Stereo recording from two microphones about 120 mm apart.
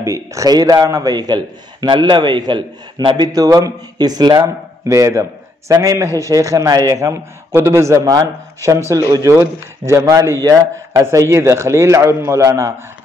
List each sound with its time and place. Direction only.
0.0 s a man's voice: 25° right (ahead or behind)
3.3 s a man's voice: 30° right (ahead or behind)